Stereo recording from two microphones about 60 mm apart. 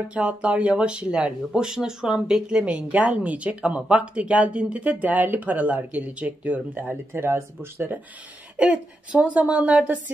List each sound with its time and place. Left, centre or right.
0.1 s speech: centre; by 8.0 s right
8.5 s speech: right